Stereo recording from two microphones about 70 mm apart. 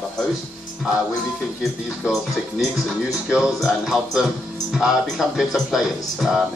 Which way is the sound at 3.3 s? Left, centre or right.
Centre.